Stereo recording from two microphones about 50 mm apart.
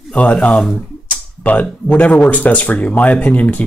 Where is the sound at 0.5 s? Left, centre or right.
Centre.